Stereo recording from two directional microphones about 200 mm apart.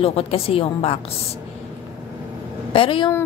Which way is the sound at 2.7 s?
25° left (ahead or behind).